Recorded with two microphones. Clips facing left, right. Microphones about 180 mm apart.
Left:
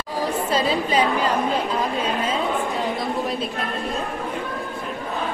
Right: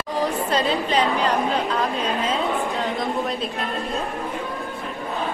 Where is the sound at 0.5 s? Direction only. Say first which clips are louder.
Even; 5° left (ahead or behind).